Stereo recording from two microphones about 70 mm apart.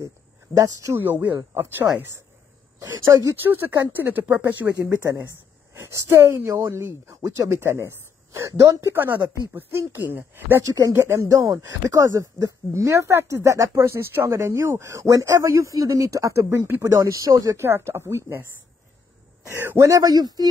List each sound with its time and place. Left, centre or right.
0.9 s speech: right
3.1 s speech: right
3.4 s speech: right
5.8 s speech: right
8.9 s speech: right
10.6 s speech: right
17.6 s speech: right
19.4 s a man's voice: right
19.8 s speech: right